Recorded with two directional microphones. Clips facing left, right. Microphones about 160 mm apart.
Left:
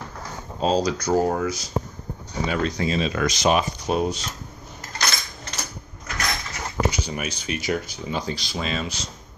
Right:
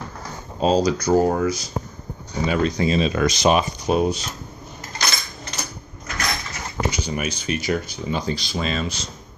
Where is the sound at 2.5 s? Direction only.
20° right (ahead or behind).